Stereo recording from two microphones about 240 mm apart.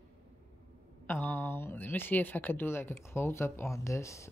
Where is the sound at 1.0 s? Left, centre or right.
Centre.